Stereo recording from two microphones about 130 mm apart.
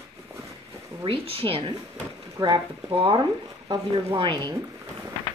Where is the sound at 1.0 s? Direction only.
45° right (ahead or behind).